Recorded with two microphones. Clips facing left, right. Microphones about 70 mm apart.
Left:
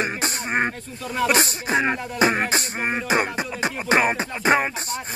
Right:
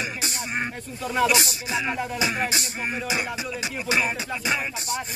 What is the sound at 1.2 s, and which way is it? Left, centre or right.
Music, left.